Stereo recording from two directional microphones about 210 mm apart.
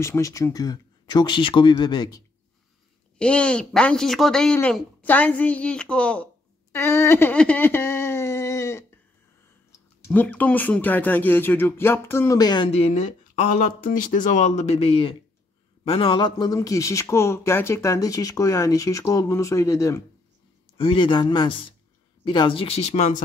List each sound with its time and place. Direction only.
0.0 s speech: 15° left (ahead or behind)
3.2 s speech: 5° left (ahead or behind)
10.0 s speech: 10° left (ahead or behind)
20.7 s speech: 25° left (ahead or behind)